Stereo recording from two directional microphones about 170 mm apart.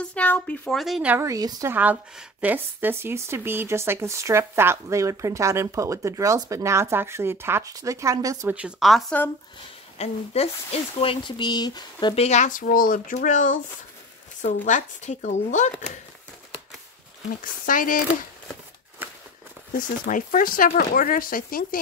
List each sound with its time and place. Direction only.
0.0 s speech: 10° left (ahead or behind); by 8.5 s 20° right (ahead or behind)
8.5 s speech: 5° right (ahead or behind)
9.9 s speech: 35° left (ahead or behind)
12.3 s speech: 45° left (ahead or behind)
14.7 s speech: 45° left (ahead or behind)
17.4 s speech: 50° left (ahead or behind)
19.0 s a sound: 10° right (ahead or behind)
19.8 s speech: 50° left (ahead or behind)